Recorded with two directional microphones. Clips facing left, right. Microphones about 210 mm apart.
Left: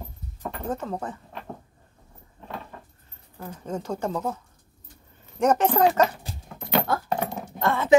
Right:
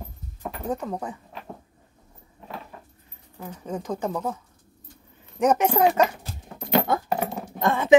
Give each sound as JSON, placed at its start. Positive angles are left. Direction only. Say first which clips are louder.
{"t": 0.4, "sound": "a sound", "louder": "right 1 dB", "side_deg": -10}
{"t": 3.3, "sound": "speech", "louder": "even", "side_deg": -10}
{"t": 5.4, "sound": "speech", "louder": "even", "side_deg": -10}
{"t": 6.7, "sound": "keys jangling", "louder": "right 2 dB", "side_deg": -10}
{"t": 7.5, "sound": "speech", "louder": "right 2 dB", "side_deg": -15}